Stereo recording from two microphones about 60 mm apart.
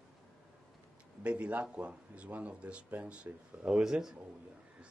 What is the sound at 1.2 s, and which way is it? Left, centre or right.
Speech, right.